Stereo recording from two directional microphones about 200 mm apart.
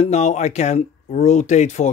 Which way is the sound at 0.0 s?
35° left (ahead or behind).